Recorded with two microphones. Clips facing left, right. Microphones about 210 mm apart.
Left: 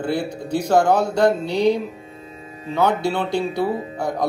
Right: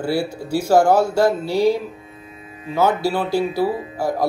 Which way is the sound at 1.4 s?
20° left (ahead or behind).